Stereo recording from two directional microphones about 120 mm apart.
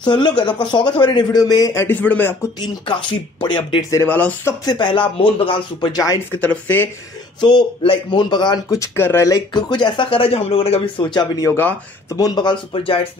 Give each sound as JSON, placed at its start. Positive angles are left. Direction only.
{"t": 0.0, "sound": "a man's voice", "side_deg": 40}
{"t": 3.1, "sound": "speech", "side_deg": 40}
{"t": 3.9, "sound": "speech", "side_deg": 15}
{"t": 4.6, "sound": "speech", "side_deg": 40}
{"t": 6.4, "sound": "speech", "side_deg": 15}
{"t": 7.3, "sound": "a man's voice", "side_deg": 40}
{"t": 9.6, "sound": "speech", "side_deg": 40}
{"t": 11.1, "sound": "a man's voice", "side_deg": 35}